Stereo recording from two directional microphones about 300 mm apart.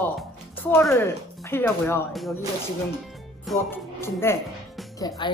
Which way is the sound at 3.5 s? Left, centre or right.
Centre.